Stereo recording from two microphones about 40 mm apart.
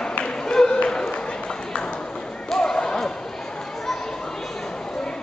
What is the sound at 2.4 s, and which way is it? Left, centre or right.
Basketball bounce, centre.